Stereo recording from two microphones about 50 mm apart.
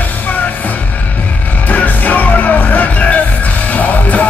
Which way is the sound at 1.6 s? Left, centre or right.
Left.